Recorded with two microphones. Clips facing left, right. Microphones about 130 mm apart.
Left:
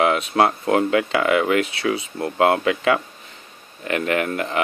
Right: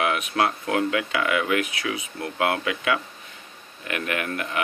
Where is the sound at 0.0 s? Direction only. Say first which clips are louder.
Left 6 dB; 30° left (ahead or behind).